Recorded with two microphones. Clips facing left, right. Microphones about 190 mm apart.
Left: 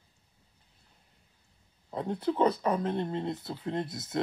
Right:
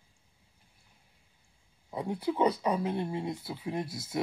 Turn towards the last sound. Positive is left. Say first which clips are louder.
# left 1 dB
turn(degrees=-10)  # may be behind; listen again after turning